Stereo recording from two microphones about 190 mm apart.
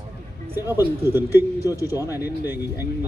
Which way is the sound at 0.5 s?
10° right (ahead or behind).